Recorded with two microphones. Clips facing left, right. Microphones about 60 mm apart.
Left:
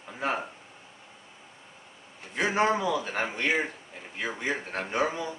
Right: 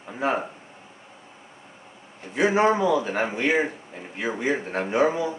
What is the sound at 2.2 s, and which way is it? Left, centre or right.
A man's voice, centre.